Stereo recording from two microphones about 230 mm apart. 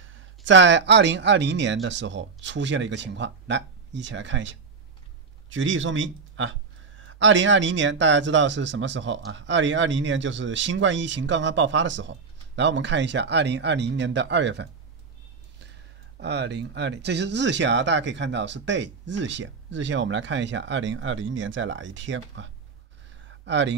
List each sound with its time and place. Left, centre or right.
0.0 s speech: right
16.2 s speech: right